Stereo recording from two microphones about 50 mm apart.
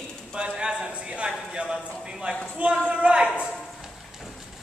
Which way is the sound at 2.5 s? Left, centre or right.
Right.